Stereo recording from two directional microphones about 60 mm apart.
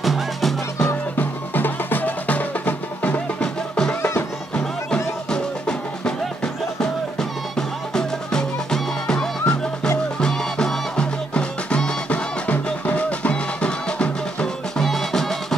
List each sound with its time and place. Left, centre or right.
0.0 s music: centre
0.8 s music: left
3.3 s music: centre
4.9 s music: centre